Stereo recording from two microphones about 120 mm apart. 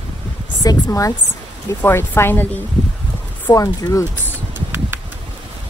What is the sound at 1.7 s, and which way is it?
Speech, 20° left (ahead or behind).